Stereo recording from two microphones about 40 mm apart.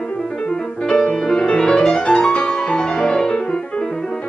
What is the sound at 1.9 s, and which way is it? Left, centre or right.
Music, left.